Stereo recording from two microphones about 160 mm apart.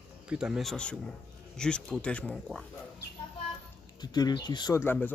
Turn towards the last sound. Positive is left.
turn(degrees=10)  # may be behind; listen again after turning